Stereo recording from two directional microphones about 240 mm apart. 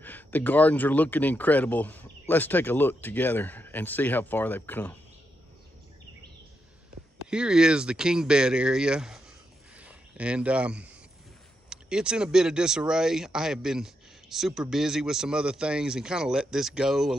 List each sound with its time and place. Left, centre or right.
0.0 s speech: centre
7.2 s speech: centre